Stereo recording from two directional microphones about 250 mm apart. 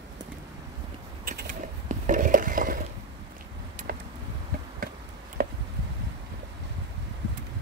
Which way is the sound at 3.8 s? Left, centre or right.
Right.